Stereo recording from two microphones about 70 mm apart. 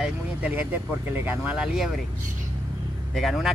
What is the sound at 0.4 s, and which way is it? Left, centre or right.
Speech, right.